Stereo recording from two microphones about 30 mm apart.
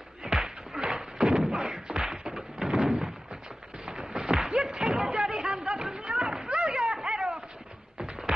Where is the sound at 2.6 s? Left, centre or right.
Right.